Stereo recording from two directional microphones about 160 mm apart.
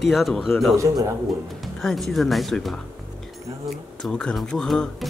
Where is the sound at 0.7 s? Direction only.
20° right (ahead or behind).